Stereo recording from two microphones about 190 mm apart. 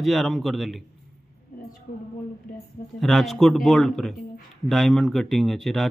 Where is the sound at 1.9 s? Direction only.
50° left (ahead or behind).